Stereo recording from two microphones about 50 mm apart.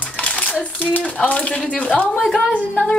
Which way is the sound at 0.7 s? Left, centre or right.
Left.